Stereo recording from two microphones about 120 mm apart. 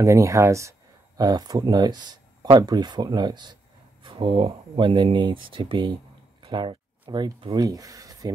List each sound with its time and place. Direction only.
0.0 s speech: 25° right (ahead or behind); by 5.9 s 45° right (ahead or behind)
6.4 s a sound: 40° right (ahead or behind)
7.5 s speech: 30° right (ahead or behind)